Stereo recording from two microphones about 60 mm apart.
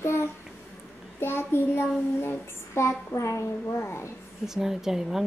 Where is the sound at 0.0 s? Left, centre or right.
Left.